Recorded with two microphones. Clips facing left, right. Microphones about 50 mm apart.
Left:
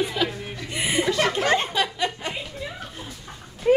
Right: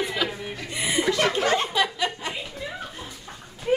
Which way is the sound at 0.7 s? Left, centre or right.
Left.